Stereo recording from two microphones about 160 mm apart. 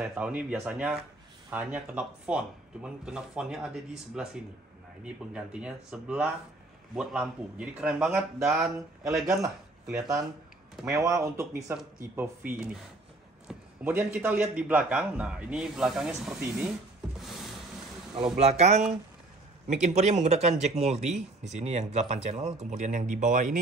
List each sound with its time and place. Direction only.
0.0 s speech: 5° right (ahead or behind)
10.9 s speech: 20° right (ahead or behind)
17.2 s a sound: centre (ahead or behind)
18.4 s speech: 45° right (ahead or behind)